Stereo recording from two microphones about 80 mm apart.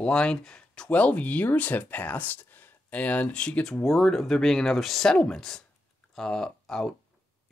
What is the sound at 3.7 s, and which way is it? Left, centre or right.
Speech, centre.